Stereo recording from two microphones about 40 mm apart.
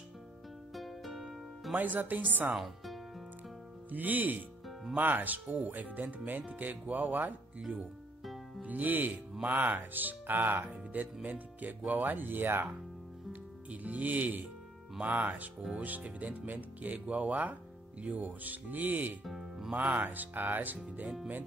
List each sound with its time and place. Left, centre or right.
0.7 s music: centre
1.7 s speech: right
2.5 s music: centre
3.9 s speech: right
8.2 s music: centre
8.6 s speech: right
13.3 s speech: right
19.2 s music: centre
19.7 s speech: right
20.0 s speech: right